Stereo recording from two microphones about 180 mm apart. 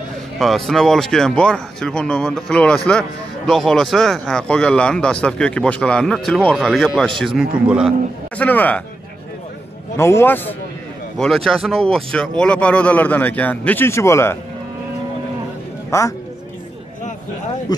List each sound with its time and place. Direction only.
0.4 s speech: centre (ahead or behind)
8.4 s a man's voice: 10° left (ahead or behind)
9.9 s a man's voice: 15° left (ahead or behind)
15.9 s a man's voice: 15° left (ahead or behind)
17.7 s speech: 20° left (ahead or behind)